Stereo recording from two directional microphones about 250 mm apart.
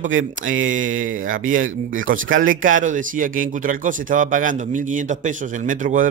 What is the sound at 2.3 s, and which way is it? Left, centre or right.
A man's voice, right.